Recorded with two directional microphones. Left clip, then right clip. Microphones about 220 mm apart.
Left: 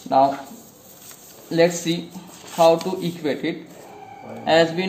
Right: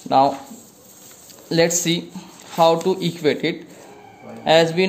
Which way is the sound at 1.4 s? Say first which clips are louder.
Right 1 dB; 50° right (ahead or behind).